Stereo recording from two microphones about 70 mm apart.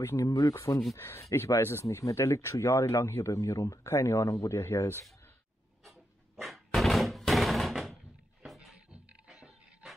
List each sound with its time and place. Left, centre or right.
0.0 s speech: left
0.9 s speech: left
3.3 s speech: left
4.2 s speech: left
4.6 s speech: left
5.9 s a sound: centre
8.9 s music: centre